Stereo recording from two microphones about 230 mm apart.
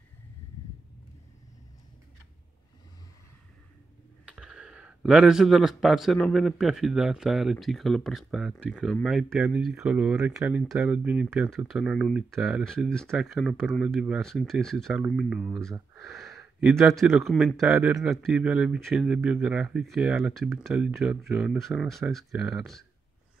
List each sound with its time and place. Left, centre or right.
4.3 s speech: centre